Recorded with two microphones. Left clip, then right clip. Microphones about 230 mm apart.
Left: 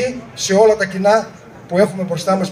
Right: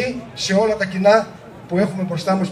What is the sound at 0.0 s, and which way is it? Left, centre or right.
A man's voice, left.